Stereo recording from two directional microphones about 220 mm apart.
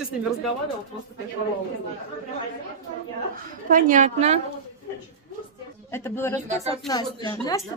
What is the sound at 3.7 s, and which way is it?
Speech, 35° right (ahead or behind).